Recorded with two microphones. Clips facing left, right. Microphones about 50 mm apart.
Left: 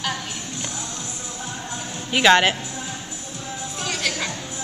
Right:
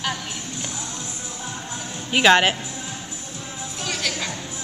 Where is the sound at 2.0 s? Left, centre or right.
Centre.